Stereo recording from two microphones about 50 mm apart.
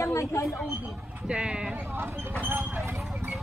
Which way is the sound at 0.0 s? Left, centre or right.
Left.